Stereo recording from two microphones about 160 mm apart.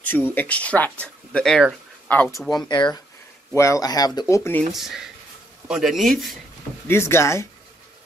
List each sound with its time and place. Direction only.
0.1 s speech: 10° left (ahead or behind)
2.7 s speech: 25° left (ahead or behind)
4.7 s speech: centre (ahead or behind)
6.9 s speech: 15° left (ahead or behind)